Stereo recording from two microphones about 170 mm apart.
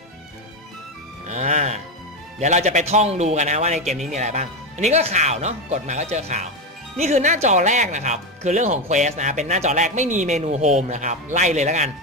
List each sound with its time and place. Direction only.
1.2 s music: 45° right (ahead or behind)
2.4 s speech: 45° right (ahead or behind)